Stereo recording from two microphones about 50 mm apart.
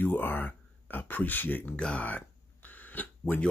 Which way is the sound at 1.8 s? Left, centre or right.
Centre.